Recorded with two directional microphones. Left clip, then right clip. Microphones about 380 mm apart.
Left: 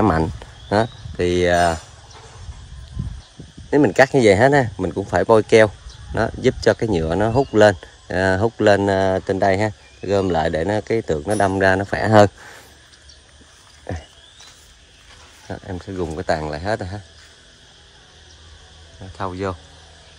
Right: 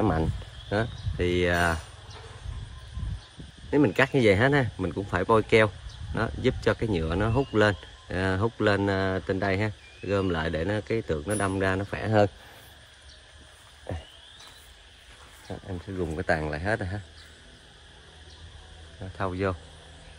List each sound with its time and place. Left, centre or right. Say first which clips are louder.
0.0 s speech: left 9 dB; left
3.7 s speech: left 9 dB; centre
16.0 s speech: left 5 dB; centre
19.1 s speech: left 4 dB; centre